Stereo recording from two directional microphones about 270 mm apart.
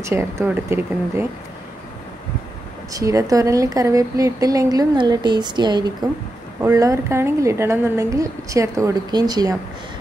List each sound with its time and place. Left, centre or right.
0.0 s a woman's voice: centre
2.9 s a woman's voice: centre